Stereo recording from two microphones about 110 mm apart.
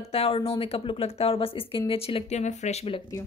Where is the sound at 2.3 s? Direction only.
90° left.